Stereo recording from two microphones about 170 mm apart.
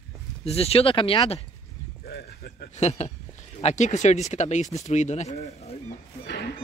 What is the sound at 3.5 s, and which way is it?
Speech, 40° left (ahead or behind).